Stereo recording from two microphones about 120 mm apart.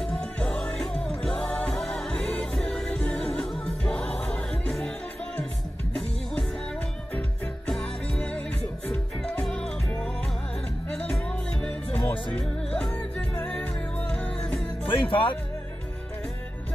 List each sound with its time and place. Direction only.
0.0 s music: 5° left (ahead or behind)
7.2 s music: 10° left (ahead or behind)
14.9 s music: 45° left (ahead or behind)